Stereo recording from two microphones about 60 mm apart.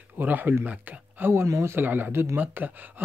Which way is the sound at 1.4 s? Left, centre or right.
Right.